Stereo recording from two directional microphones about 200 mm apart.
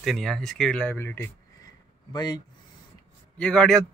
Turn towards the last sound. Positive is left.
turn(degrees=5)  # may be behind; listen again after turning